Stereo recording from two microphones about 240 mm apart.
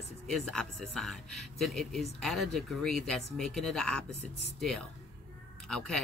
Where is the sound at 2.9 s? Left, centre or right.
Right.